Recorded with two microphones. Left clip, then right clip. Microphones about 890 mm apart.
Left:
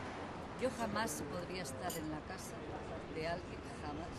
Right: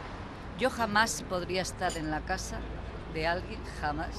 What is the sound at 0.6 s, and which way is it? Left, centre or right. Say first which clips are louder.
Speech: right 11 dB; right.